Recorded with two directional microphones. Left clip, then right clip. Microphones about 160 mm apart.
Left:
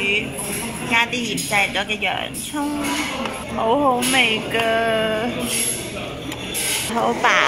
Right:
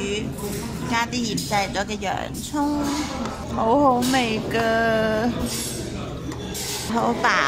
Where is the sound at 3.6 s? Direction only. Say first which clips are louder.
Even; 15° right (ahead or behind).